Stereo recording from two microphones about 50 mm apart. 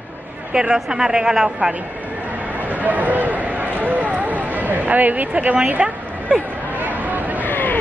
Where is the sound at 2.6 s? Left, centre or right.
Right.